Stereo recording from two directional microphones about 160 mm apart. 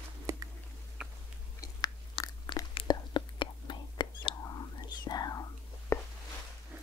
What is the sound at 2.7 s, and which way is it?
Whispering, 25° left (ahead or behind).